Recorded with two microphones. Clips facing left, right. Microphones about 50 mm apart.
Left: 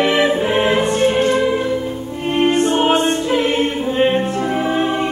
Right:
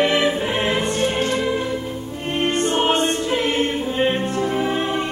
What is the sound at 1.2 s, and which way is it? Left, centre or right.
Music, left.